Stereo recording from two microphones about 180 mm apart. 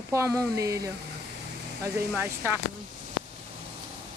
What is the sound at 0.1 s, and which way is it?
Speech, 15° right (ahead or behind).